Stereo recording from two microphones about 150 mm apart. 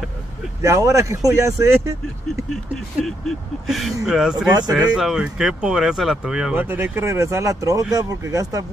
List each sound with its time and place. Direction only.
0.6 s speech: 20° right (ahead or behind)
2.5 s speech: centre (ahead or behind); by 8.6 s 25° right (ahead or behind)